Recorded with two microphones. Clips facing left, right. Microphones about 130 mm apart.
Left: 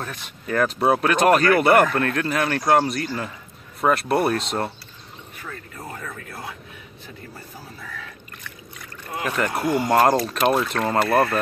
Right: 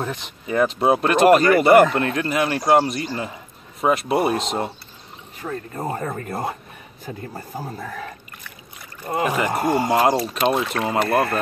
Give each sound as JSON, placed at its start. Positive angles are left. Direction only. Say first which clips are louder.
{"t": 0.0, "sound": "speech", "louder": "right 5 dB", "side_deg": -20}
{"t": 0.6, "sound": "speech", "louder": "right 2 dB", "side_deg": 0}
{"t": 1.9, "sound": "speech", "louder": "right 1 dB", "side_deg": -15}
{"t": 2.1, "sound": "speech", "louder": "right 1 dB", "side_deg": -5}
{"t": 5.4, "sound": "a man's voice", "louder": "right 9 dB", "side_deg": -35}
{"t": 9.0, "sound": "speech", "louder": "right 4 dB", "side_deg": -35}
{"t": 9.8, "sound": "speech", "louder": "left 1 dB", "side_deg": -10}
{"t": 10.8, "sound": "speech", "louder": "even", "side_deg": -15}